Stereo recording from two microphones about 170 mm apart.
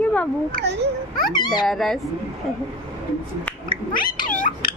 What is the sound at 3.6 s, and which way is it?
Speech, 25° left (ahead or behind).